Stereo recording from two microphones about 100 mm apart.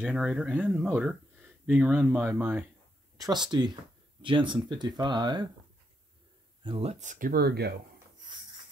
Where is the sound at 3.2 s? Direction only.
45° right (ahead or behind).